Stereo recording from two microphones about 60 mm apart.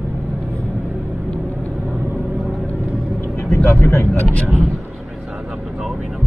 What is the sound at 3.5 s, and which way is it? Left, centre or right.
Vehicle, left.